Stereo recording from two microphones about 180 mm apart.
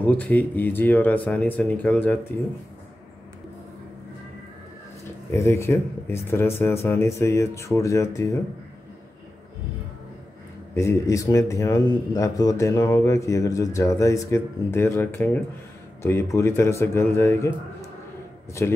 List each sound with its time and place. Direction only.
0.0 s a man's voice: 10° left (ahead or behind)
5.3 s a man's voice: 15° left (ahead or behind)
10.7 s a man's voice: 15° left (ahead or behind)